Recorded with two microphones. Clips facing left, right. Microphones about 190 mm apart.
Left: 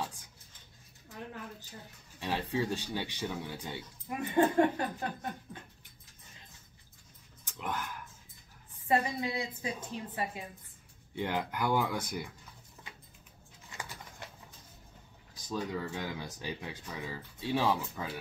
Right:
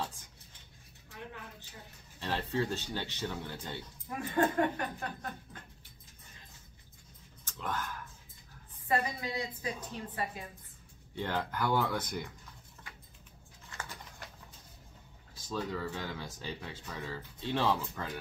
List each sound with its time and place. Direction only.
2.1 s speech: 10° left (ahead or behind)
4.4 s a woman's voice: 25° left (ahead or behind)
7.4 s a sound: 15° left (ahead or behind)
8.8 s a woman's voice: 25° left (ahead or behind)
11.1 s speech: 15° left (ahead or behind)
13.7 s bird: 15° left (ahead or behind)
15.5 s speech: 15° left (ahead or behind)